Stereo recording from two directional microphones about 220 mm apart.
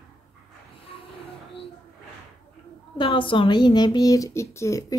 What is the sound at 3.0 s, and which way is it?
Speech, 25° left (ahead or behind).